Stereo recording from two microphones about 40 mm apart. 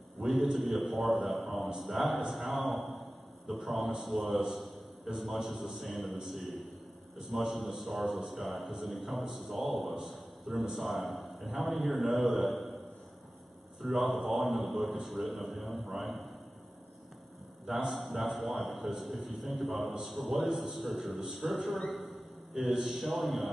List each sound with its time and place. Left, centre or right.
0.2 s a man's voice: centre
8.2 s a man's voice: centre
8.5 s a man's voice: centre
13.9 s a man's voice: centre
17.6 s a man's voice: centre